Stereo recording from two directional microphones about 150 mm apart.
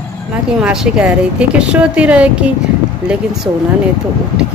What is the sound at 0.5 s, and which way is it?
Speech, 5° right (ahead or behind).